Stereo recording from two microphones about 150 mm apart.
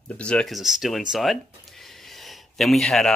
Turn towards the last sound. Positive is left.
turn(degrees=0)  # may be behind; listen again after turning